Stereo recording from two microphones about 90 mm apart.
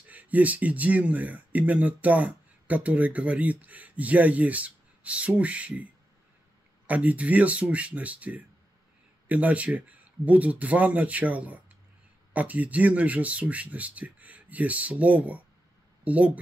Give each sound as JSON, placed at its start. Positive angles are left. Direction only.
{"t": 0.1, "sound": "speech", "side_deg": -15}
{"t": 6.9, "sound": "speech", "side_deg": -15}